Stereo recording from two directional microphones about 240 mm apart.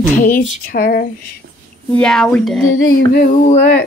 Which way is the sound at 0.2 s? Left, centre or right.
Left.